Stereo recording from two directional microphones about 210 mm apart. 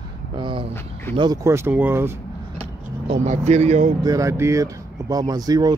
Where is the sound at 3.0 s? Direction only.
35° right (ahead or behind).